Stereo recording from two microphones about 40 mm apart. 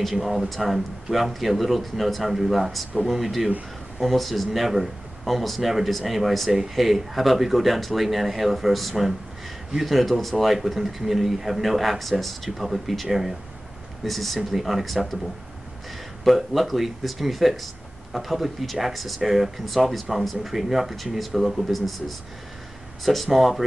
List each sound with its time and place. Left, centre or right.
0.1 s speech: centre
16.3 s speech: centre